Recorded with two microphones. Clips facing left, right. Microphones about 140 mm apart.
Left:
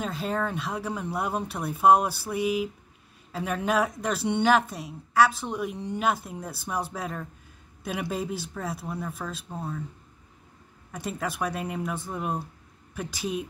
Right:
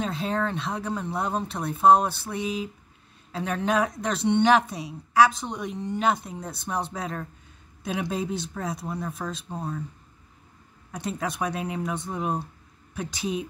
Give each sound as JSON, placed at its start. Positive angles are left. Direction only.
{"t": 0.0, "sound": "a woman's voice", "side_deg": 5}
{"t": 9.5, "sound": "speech", "side_deg": -15}
{"t": 10.9, "sound": "a woman's voice", "side_deg": 5}